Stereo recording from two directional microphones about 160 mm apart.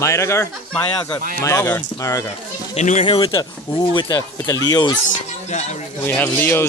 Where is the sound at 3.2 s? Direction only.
25° left (ahead or behind).